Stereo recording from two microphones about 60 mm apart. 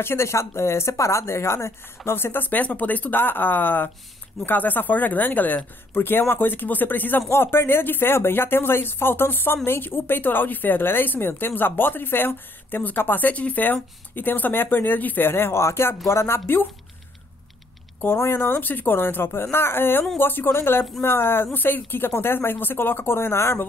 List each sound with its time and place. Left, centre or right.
0.0 s speech: left
18.0 s speech: left